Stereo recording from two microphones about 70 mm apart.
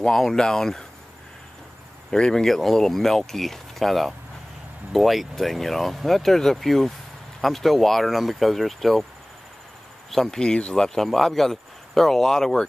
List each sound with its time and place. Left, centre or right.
0.0 s speech: centre
2.0 s speech: centre
10.1 s speech: centre